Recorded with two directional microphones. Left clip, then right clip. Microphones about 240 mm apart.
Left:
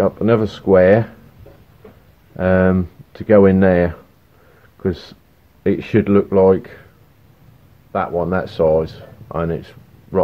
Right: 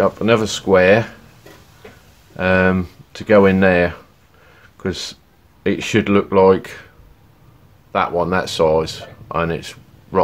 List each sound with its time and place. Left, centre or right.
0.0 s speech: centre
2.3 s speech: centre
7.9 s speech: centre